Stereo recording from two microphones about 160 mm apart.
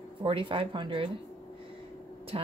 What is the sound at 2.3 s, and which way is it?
Speech, 35° right (ahead or behind).